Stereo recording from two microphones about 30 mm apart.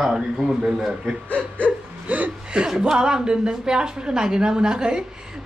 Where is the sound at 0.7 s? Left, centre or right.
Centre.